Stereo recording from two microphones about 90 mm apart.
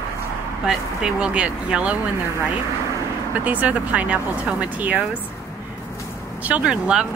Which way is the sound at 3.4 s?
15° right (ahead or behind).